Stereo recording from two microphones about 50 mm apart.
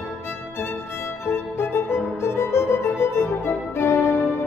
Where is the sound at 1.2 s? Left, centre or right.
Left.